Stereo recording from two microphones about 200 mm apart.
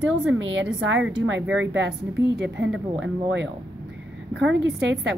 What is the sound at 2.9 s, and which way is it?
Speech, 65° right (ahead or behind).